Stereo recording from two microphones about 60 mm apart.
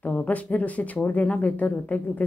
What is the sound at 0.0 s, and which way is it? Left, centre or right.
Speech, left.